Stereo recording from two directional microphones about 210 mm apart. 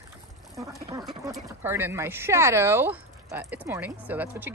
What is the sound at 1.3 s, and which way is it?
Speech, 10° right (ahead or behind).